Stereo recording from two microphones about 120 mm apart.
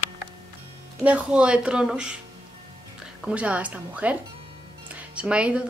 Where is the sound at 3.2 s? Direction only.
10° right (ahead or behind).